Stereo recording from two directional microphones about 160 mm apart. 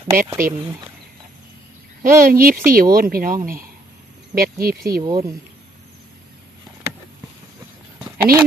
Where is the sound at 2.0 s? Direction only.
60° right (ahead or behind).